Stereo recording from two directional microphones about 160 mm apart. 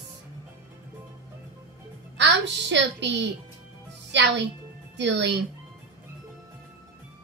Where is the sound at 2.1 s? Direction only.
90° right.